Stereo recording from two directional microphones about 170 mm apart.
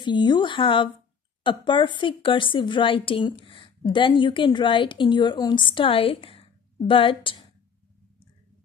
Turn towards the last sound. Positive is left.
turn(degrees=30)  # may be behind; listen again after turning